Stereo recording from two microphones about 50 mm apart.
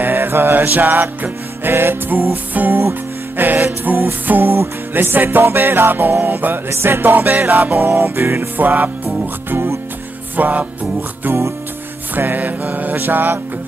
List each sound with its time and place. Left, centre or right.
0.0 s music: right
1.7 s music: right
6.7 s music: right
10.3 s music: right